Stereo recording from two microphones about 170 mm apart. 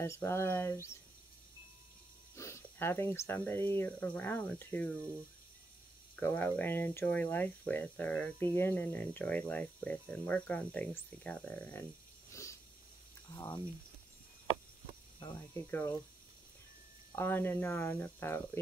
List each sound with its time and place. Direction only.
0.0 s speech: 15° left (ahead or behind)
2.3 s speech: 15° left (ahead or behind)
6.1 s speech: 10° left (ahead or behind)
12.3 s a sound: 15° left (ahead or behind)
15.1 s speech: 25° left (ahead or behind)
17.1 s speech: 15° left (ahead or behind)